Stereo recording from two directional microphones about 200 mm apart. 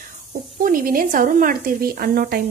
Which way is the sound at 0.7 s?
45° right (ahead or behind).